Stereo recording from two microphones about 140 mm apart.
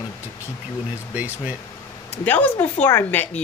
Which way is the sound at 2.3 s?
10° left (ahead or behind).